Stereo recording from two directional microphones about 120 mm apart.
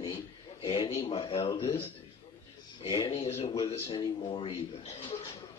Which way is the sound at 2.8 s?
40° left (ahead or behind).